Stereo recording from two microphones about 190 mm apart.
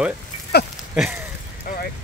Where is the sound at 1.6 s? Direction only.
50° left (ahead or behind).